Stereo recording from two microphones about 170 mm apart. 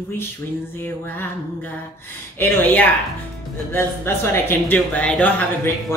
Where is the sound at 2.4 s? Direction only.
10° left (ahead or behind).